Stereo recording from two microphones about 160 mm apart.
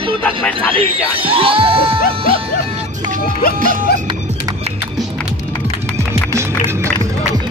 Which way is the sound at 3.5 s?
55° right (ahead or behind).